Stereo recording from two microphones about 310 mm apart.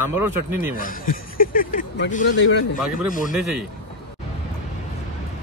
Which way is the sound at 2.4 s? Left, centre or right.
Left.